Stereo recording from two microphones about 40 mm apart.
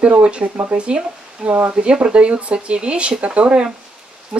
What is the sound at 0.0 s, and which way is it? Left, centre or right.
Speech, right.